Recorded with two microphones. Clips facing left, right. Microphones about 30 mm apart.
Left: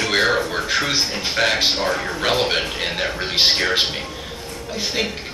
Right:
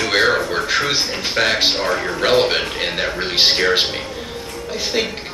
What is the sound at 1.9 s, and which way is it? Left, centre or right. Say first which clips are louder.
Speech: right 4 dB; centre.